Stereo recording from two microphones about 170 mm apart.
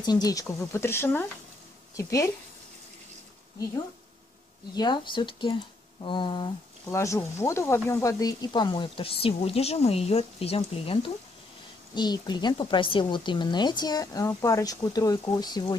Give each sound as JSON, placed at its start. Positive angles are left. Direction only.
{"t": 0.0, "sound": "a woman's voice", "side_deg": 25}
{"t": 4.7, "sound": "a woman's voice", "side_deg": 25}
{"t": 6.9, "sound": "a woman's voice", "side_deg": 15}